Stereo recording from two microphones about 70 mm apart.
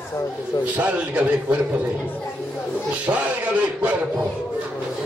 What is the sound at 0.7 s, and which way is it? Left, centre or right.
Speech, right.